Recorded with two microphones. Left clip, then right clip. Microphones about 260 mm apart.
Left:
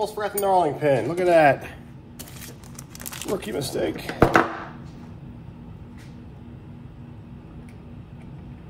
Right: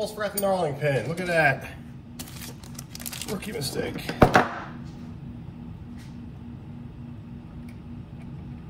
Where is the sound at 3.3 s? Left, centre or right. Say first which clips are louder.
Left 5 dB; left.